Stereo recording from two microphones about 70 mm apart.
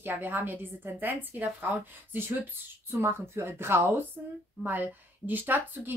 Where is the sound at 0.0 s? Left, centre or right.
Right.